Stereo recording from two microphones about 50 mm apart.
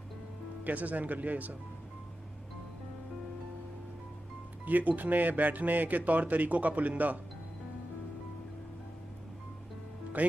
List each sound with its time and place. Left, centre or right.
0.7 s a man's voice: right
4.6 s a man's voice: right
10.2 s a man's voice: right